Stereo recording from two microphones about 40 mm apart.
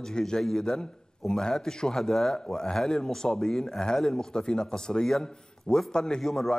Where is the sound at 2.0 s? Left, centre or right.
Centre.